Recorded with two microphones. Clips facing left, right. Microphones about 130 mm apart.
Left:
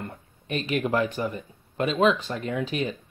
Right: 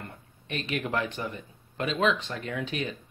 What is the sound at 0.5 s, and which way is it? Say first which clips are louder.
Speech: left 6 dB; 35° left (ahead or behind).